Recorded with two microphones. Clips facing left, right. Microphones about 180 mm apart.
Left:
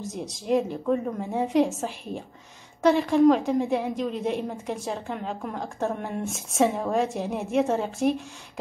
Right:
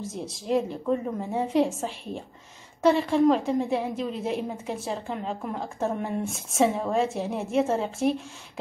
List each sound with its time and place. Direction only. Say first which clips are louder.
0.0 s a woman's voice: left 1 dB; centre (ahead or behind)